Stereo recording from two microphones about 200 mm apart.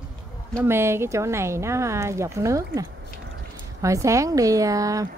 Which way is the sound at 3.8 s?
15° right (ahead or behind).